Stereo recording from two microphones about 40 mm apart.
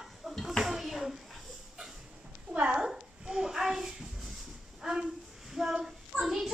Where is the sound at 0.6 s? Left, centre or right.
Centre.